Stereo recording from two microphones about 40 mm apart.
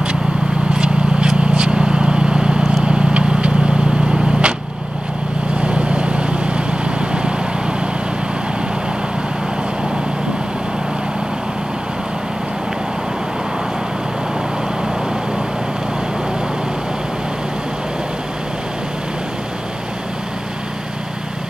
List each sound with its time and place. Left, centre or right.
0.7 s vehicle: right
5.6 s vehicle: right